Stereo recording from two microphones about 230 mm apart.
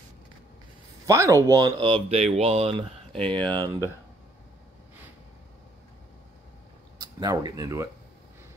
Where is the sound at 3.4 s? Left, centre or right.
Centre.